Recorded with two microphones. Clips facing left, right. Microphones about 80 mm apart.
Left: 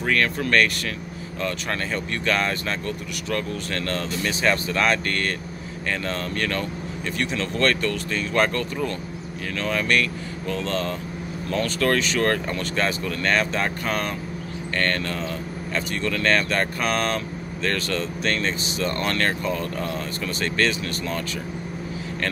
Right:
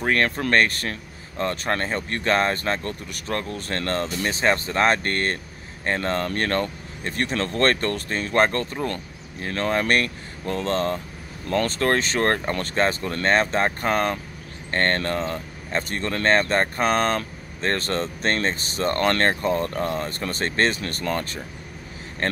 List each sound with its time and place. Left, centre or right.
0.0 s speech: right